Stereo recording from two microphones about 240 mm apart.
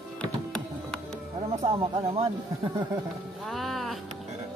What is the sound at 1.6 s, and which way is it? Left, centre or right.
Speech, right.